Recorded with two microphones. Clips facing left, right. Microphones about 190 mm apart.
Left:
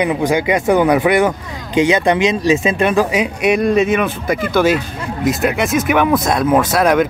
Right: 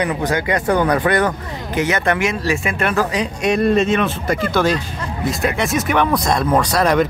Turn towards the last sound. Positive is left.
turn(degrees=0)  # may be behind; listen again after turning